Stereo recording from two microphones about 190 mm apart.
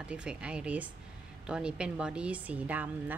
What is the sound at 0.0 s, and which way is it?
Speech, 5° right (ahead or behind).